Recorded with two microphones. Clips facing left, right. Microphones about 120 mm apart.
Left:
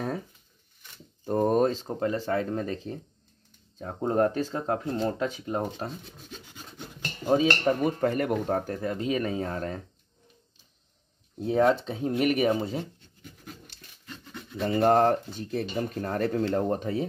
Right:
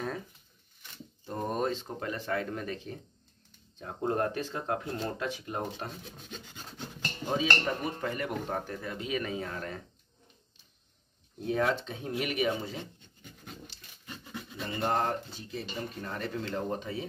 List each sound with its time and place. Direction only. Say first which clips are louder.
1.2 s speech: left 9 dB; 40° left (ahead or behind)
4.1 s speech: left 7 dB; 30° left (ahead or behind)
6.0 s rub: even; centre (ahead or behind)
7.3 s speech: left 7 dB; 40° left (ahead or behind)
11.6 s speech: left 10 dB; 35° left (ahead or behind)
14.0 s a sound: even; 5° right (ahead or behind)
14.6 s speech: left 10 dB; 35° left (ahead or behind)
14.9 s speech: left 8 dB; 50° left (ahead or behind)